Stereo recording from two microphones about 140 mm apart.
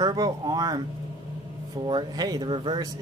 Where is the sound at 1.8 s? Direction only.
30° right (ahead or behind).